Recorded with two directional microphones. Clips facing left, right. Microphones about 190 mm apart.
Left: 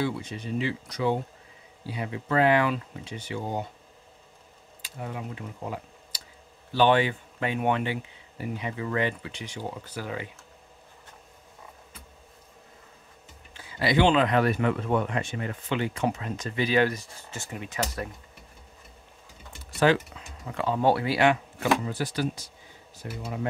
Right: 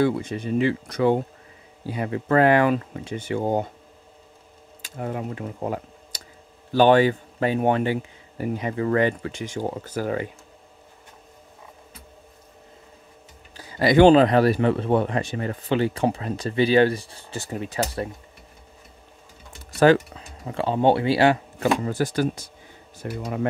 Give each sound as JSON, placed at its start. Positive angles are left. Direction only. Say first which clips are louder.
{"t": 0.0, "sound": "a man's voice", "louder": "right 8 dB", "side_deg": -50}
{"t": 4.8, "sound": "a man's voice", "louder": "right 7 dB", "side_deg": -50}
{"t": 13.6, "sound": "speech", "louder": "right 8 dB", "side_deg": -45}
{"t": 19.8, "sound": "speech", "louder": "right 6 dB", "side_deg": -40}
{"t": 23.2, "sound": "speech", "louder": "right 6 dB", "side_deg": -60}